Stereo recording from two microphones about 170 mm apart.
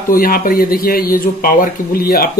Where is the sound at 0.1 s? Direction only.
55° left (ahead or behind).